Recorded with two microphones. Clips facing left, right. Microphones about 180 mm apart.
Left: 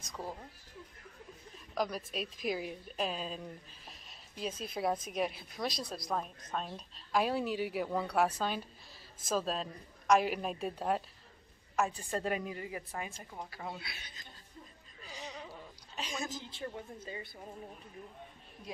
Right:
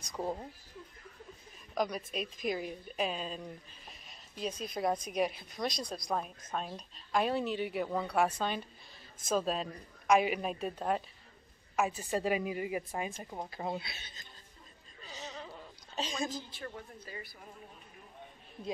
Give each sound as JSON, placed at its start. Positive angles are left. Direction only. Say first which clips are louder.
{"t": 0.2, "sound": "a woman's voice", "louder": "right 7 dB", "side_deg": -25}
{"t": 1.8, "sound": "a woman's voice", "louder": "right 1 dB", "side_deg": 0}
{"t": 16.3, "sound": "a woman's voice", "louder": "even", "side_deg": 20}